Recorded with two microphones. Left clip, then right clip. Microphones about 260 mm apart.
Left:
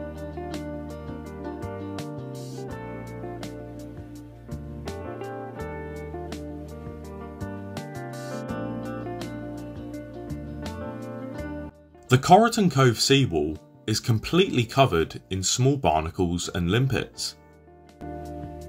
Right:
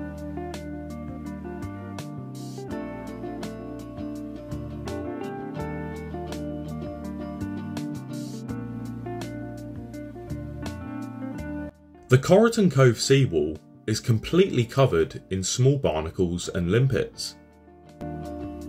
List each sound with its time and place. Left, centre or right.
4.8 s music: centre
7.3 s music: centre
12.1 s speech: left